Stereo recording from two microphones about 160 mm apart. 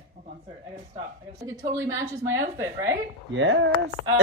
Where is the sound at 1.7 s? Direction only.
20° right (ahead or behind).